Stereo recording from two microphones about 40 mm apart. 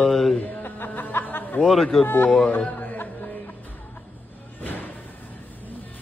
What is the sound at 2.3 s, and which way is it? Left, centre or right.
Speech, left.